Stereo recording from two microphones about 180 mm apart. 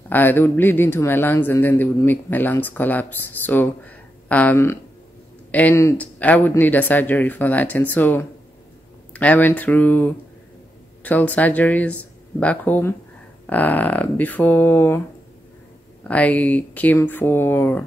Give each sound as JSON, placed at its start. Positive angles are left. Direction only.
{"t": 0.1, "sound": "speech", "side_deg": 10}
{"t": 16.0, "sound": "speech", "side_deg": 10}